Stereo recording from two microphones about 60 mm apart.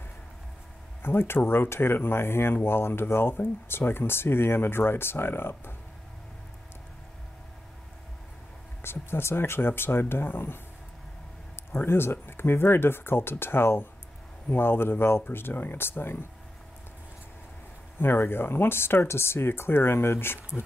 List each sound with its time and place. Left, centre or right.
1.0 s speech: left
8.8 s speech: left
11.7 s speech: left
17.9 s speech: left